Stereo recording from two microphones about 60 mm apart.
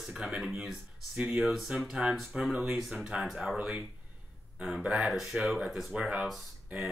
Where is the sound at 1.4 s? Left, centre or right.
Centre.